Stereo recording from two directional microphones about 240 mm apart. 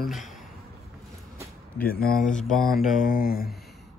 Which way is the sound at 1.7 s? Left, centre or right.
Left.